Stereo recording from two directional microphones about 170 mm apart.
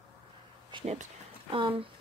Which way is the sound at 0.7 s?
25° right (ahead or behind).